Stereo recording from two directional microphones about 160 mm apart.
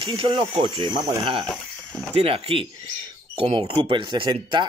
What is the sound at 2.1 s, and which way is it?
Speech, 35° right (ahead or behind).